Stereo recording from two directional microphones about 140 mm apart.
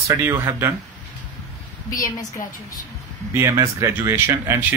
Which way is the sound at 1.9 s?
75° left (ahead or behind).